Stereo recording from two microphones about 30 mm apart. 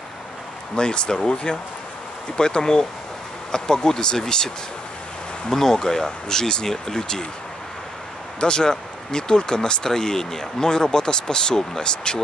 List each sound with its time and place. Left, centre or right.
0.7 s speech: left
5.5 s speech: centre
8.4 s speech: left